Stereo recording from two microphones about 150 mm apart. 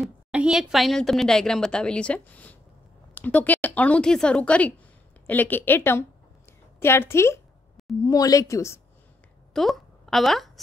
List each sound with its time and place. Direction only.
0.0 s a woman's voice: 5° right (ahead or behind); by 8.8 s 20° left (ahead or behind)
9.5 s a woman's voice: centre (ahead or behind)